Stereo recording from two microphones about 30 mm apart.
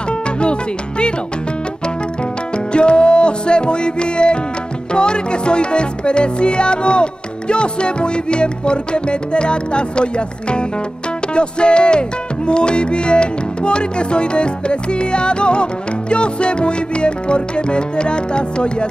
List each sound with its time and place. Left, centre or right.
0.4 s music: left
2.5 s music: left